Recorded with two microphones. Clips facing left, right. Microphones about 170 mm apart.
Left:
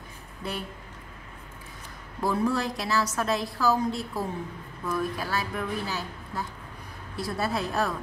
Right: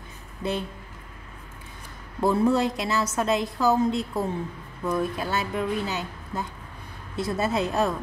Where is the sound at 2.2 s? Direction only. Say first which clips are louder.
Right 5 dB; 25° right (ahead or behind).